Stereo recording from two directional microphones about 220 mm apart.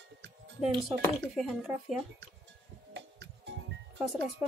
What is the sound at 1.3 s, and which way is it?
Speech, centre (ahead or behind).